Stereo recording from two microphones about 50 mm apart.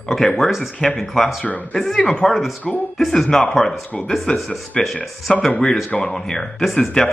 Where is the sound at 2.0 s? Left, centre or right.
Centre.